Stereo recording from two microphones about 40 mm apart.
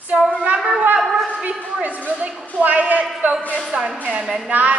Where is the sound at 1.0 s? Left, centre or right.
Centre.